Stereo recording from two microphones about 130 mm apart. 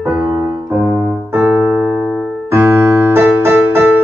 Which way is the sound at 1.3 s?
15° right (ahead or behind).